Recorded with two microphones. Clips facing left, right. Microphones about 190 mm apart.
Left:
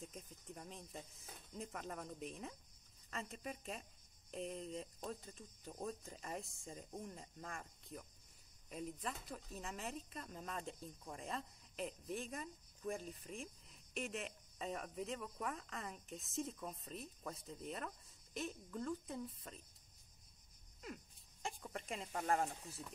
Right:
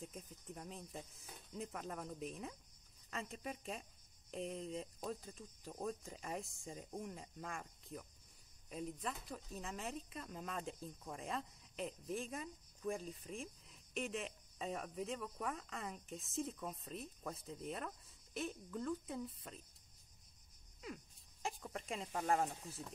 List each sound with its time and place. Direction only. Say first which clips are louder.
0.1 s speech: right 2 dB; centre (ahead or behind)
20.8 s speech: right 1 dB; centre (ahead or behind)
22.7 s speech: right 2 dB; 30° right (ahead or behind)